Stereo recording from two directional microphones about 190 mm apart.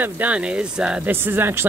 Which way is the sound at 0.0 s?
10° right (ahead or behind).